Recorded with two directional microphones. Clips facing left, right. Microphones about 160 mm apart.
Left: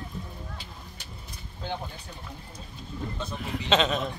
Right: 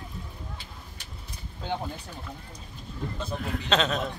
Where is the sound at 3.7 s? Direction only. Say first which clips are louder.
Left 2 dB; centre (ahead or behind).